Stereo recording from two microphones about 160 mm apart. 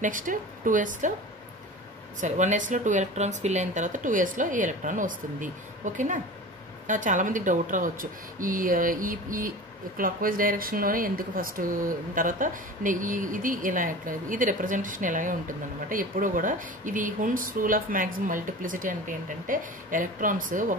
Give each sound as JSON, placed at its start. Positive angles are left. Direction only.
{"t": 0.0, "sound": "speech", "side_deg": -55}
{"t": 2.1, "sound": "speech", "side_deg": -50}